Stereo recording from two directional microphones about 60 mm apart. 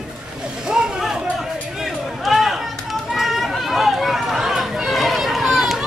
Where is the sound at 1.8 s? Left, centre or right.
Centre.